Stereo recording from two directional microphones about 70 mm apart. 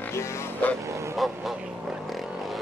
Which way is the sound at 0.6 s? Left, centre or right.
Left.